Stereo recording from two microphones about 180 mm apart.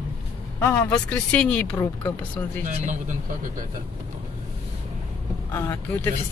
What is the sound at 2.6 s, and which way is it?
Speech, 45° right (ahead or behind).